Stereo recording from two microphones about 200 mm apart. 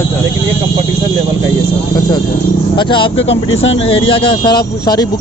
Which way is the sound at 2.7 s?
25° left (ahead or behind).